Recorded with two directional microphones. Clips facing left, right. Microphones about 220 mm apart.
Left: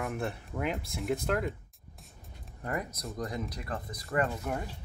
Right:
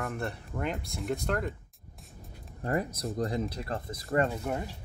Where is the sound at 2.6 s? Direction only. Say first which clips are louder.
Right 5 dB; 30° right (ahead or behind).